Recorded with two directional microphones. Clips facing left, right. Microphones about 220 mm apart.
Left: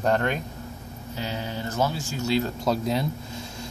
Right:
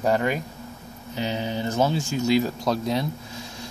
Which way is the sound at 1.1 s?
20° right (ahead or behind).